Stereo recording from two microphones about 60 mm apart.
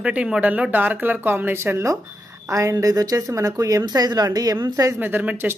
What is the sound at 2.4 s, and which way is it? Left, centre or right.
A woman's voice, right.